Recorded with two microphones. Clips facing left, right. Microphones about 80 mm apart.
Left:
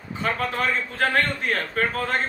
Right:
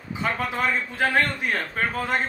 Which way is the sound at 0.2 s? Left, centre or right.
Centre.